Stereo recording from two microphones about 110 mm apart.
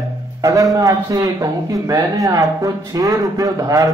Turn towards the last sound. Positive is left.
turn(degrees=-30)  # may be behind; listen again after turning